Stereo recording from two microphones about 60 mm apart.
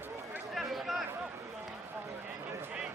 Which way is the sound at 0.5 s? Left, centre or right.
Centre.